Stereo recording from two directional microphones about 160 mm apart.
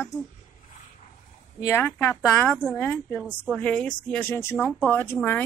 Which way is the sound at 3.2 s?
10° right (ahead or behind).